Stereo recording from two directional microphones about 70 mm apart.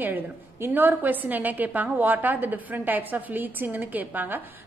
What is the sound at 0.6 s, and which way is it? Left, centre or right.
A woman's voice, right.